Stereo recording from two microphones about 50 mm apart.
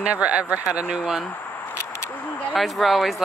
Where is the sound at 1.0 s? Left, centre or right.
Centre.